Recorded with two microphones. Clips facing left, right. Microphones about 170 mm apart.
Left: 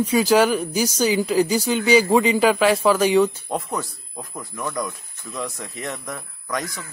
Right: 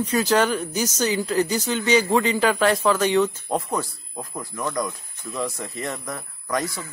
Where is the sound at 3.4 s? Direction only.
Centre (ahead or behind).